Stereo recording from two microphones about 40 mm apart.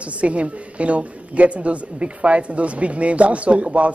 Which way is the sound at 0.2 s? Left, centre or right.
Right.